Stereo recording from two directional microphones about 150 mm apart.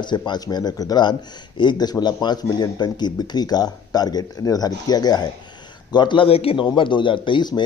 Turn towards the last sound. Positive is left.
turn(degrees=30)  # may be behind; listen again after turning